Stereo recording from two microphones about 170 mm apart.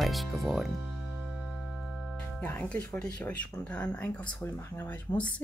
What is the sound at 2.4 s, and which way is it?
Speech, 10° left (ahead or behind).